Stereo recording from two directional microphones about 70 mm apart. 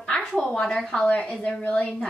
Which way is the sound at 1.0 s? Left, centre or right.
Left.